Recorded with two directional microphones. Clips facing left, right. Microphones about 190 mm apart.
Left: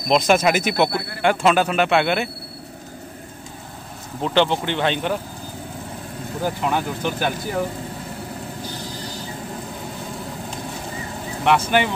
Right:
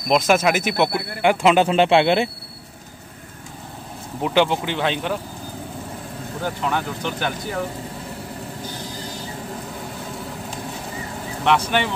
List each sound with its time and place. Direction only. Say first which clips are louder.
0.1 s speech: left 1 dB; 5° right (ahead or behind)
1.2 s speech: right 2 dB; 15° right (ahead or behind)
4.2 s speech: even; 10° right (ahead or behind)
6.4 s speech: left 2 dB; 10° left (ahead or behind)
11.4 s speech: left 2 dB; 5° left (ahead or behind)